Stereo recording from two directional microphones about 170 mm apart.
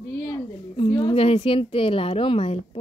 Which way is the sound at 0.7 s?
30° left (ahead or behind).